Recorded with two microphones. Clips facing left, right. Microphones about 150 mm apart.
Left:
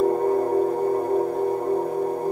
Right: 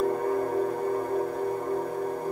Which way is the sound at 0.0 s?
30° left (ahead or behind).